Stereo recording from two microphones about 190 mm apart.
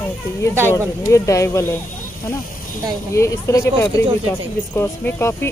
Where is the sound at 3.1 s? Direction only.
15° left (ahead or behind).